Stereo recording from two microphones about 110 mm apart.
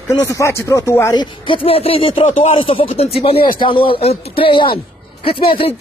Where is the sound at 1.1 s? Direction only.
45° left (ahead or behind).